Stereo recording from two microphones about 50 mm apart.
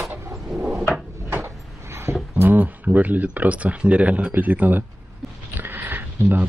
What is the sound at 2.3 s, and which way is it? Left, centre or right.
Speech, right.